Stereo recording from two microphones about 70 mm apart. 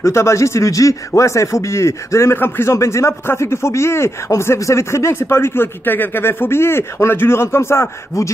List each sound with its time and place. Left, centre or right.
0.0 s speech: left
2.3 s speech: left